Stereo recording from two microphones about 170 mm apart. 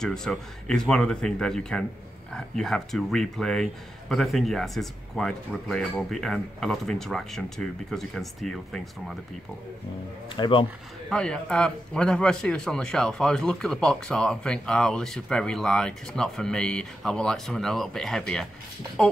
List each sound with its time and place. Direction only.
0.0 s a man's voice: 5° left (ahead or behind)
10.3 s speech: 30° left (ahead or behind)
11.1 s a man's voice: 5° left (ahead or behind)